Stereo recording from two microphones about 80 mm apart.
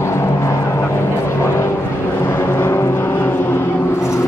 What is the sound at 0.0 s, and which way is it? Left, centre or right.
Vehicle, left.